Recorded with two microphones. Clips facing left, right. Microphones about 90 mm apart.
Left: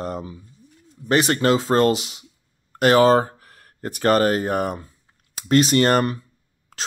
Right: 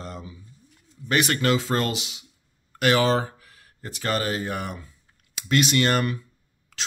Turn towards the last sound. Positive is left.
turn(degrees=45)  # may be behind; listen again after turning